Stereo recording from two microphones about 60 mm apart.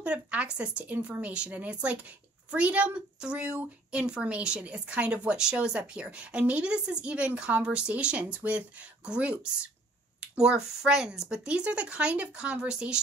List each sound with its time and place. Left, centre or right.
0.0 s a woman's voice: right
0.9 s speech: right
1.2 s a woman's voice: centre